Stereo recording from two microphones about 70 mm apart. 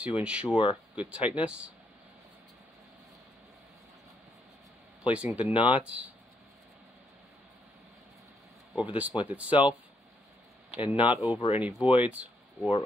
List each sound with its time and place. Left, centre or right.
0.0 s speech: centre
5.0 s speech: centre
8.7 s speech: centre